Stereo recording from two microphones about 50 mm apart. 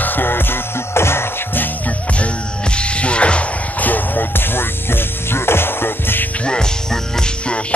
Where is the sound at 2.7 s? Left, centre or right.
Left.